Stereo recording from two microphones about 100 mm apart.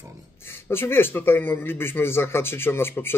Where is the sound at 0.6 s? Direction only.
25° left (ahead or behind).